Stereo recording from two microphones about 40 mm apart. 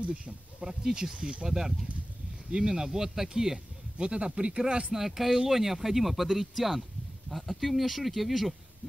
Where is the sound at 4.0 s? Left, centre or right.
Right.